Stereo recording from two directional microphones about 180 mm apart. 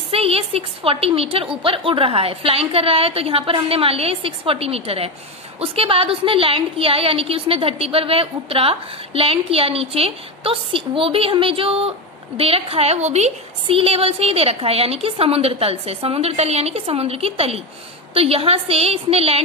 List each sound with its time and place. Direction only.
0.1 s a woman's voice: 30° right (ahead or behind)